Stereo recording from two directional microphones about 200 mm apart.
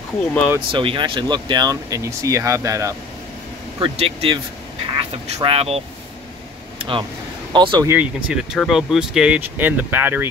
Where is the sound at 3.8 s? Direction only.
25° right (ahead or behind).